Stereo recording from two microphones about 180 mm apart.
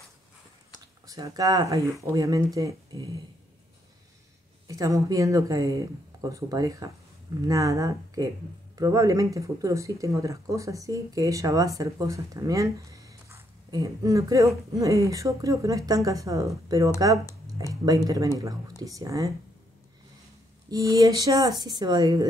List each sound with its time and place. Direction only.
1.0 s speech: 20° right (ahead or behind)
4.6 s speech: 20° right (ahead or behind)
20.7 s speech: 20° right (ahead or behind)